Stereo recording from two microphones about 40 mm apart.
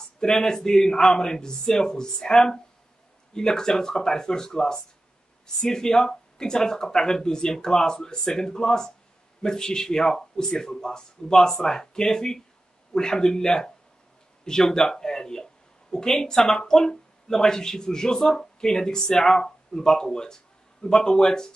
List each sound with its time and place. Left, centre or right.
0.0 s speech: centre